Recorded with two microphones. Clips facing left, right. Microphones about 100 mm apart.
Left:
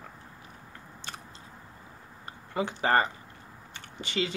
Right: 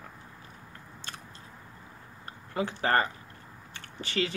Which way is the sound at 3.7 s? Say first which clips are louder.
Even; 15° left (ahead or behind).